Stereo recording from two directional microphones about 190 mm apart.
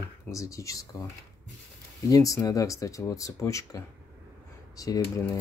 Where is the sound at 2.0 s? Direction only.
20° left (ahead or behind).